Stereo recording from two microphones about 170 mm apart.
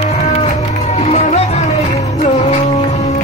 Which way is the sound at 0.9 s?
40° left (ahead or behind).